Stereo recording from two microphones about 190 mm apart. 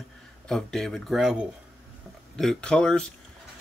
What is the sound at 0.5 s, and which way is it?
Speech, 5° left (ahead or behind).